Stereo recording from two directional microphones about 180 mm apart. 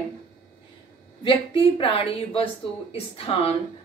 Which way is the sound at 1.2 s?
30° left (ahead or behind).